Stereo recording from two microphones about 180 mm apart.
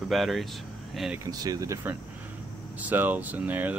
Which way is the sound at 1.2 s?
20° right (ahead or behind).